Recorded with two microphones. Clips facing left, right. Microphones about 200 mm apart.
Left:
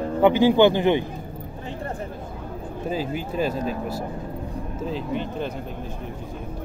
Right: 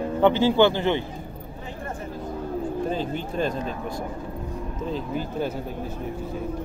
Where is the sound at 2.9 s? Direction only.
5° left (ahead or behind).